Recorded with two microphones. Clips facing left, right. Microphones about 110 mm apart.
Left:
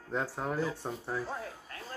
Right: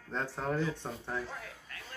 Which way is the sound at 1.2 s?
35° left (ahead or behind).